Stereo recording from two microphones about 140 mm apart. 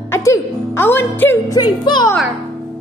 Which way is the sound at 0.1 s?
20° left (ahead or behind).